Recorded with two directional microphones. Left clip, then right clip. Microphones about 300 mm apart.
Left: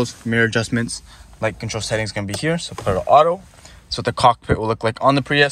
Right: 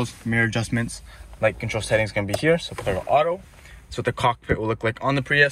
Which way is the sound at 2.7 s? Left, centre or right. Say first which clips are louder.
Left 5 dB; left.